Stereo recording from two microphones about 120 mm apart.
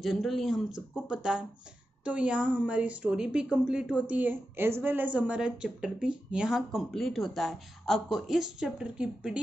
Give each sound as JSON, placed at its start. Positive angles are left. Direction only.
{"t": 0.0, "sound": "a woman's voice", "side_deg": 0}